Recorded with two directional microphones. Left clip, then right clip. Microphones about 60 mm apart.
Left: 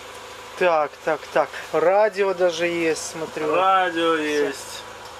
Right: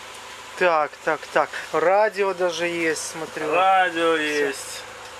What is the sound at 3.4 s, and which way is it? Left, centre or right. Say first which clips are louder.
Speech: even; right.